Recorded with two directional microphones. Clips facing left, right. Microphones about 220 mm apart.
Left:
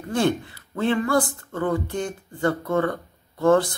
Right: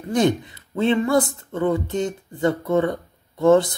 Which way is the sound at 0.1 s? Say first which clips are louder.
Right 3 dB; 20° right (ahead or behind).